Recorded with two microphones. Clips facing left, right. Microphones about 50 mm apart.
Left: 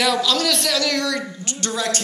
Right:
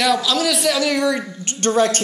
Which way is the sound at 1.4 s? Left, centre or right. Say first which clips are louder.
Right 8 dB; right.